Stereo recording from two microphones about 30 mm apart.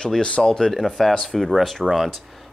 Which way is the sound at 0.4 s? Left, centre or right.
Centre.